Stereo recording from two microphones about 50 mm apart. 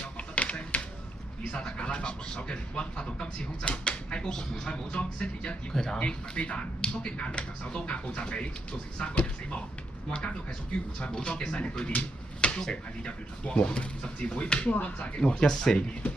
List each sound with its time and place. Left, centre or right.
0.0 s a sound: left
1.6 s a man's voice: left
5.9 s speech: left
14.7 s speech: left
15.1 s speech: centre
15.5 s speech: centre